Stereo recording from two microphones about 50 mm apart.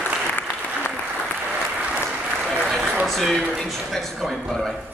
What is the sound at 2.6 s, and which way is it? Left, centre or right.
Applause, centre.